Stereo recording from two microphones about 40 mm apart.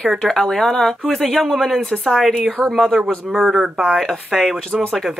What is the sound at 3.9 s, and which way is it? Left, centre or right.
Speech, left.